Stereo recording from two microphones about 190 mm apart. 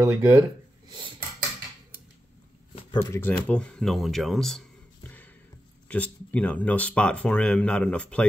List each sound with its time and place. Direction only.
0.1 s speech: 10° right (ahead or behind)
0.8 s a sound: 25° right (ahead or behind)
3.0 s speech: 15° left (ahead or behind)
5.9 s speech: 5° left (ahead or behind)